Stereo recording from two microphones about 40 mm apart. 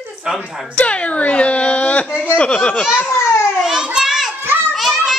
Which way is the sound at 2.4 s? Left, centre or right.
Left.